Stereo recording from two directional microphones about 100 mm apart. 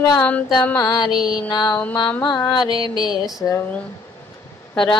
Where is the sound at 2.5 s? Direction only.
45° left (ahead or behind).